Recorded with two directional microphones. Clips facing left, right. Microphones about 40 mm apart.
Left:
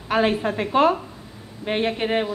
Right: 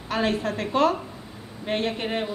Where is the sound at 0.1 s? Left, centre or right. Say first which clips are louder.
Left 4 dB; left.